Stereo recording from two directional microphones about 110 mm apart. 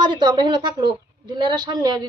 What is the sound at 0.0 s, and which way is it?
A woman's voice, 40° right (ahead or behind).